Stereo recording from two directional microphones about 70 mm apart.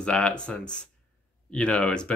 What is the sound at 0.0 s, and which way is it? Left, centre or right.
Speech, centre.